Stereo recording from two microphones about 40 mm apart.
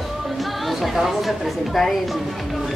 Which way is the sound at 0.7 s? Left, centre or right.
Centre.